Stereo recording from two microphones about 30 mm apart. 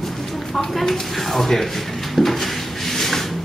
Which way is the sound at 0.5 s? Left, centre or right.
Centre.